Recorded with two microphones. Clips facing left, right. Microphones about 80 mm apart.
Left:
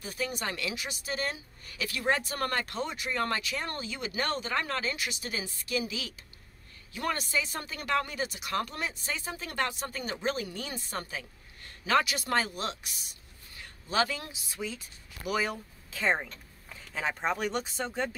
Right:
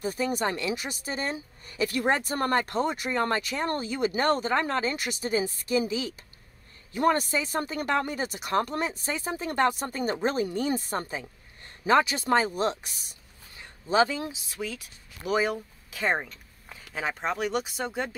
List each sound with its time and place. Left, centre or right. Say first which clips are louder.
0.0 s speech: right 7 dB; right
3.2 s speech: right 3 dB; right
5.2 s speech: right 10 dB; right
9.7 s a woman's voice: right 8 dB; right
12.4 s speech: right 8 dB; right
13.6 s speech: right 6 dB; right